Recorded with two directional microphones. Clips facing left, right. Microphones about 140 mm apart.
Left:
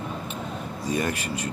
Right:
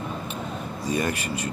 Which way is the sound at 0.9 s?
5° right (ahead or behind).